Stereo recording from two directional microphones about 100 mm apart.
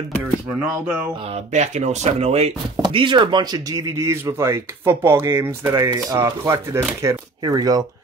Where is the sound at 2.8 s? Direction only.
55° right (ahead or behind); by 5.7 s 25° right (ahead or behind).